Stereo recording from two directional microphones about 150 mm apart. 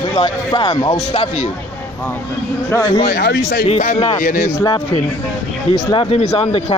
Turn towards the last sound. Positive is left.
turn(degrees=40)  # may be behind; listen again after turning